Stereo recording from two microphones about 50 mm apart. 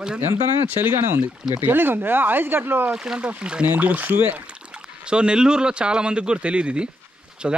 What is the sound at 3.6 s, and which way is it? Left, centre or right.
Speech, right.